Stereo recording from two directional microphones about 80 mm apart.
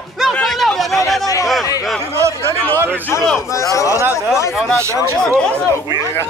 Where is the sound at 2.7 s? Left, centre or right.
Right.